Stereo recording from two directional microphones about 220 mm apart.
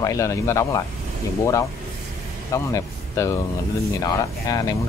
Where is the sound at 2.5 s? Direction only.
15° left (ahead or behind).